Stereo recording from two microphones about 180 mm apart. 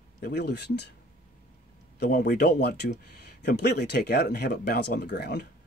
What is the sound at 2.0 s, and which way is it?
Speech, 60° left (ahead or behind).